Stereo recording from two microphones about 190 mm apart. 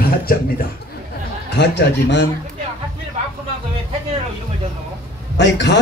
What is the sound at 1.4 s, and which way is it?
Speech, 65° left (ahead or behind).